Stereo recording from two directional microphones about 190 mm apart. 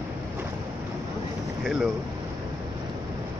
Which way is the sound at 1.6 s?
Centre (ahead or behind).